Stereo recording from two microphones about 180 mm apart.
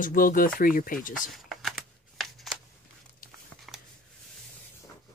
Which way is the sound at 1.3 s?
Centre (ahead or behind).